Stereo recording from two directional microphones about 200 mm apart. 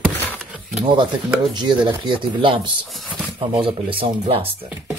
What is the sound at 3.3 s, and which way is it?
Speech, 25° right (ahead or behind).